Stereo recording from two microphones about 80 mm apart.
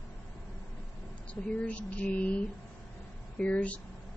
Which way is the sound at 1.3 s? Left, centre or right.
Centre.